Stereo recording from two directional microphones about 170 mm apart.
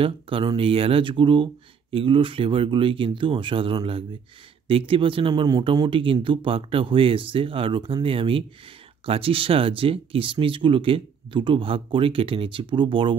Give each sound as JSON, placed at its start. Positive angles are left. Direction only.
{"t": 0.0, "sound": "speech", "side_deg": -30}